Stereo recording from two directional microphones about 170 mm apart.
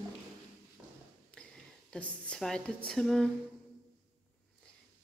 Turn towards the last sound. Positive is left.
turn(degrees=0)  # may be behind; listen again after turning